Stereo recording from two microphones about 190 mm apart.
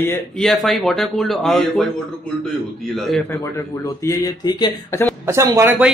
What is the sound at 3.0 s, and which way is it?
Speech, centre (ahead or behind).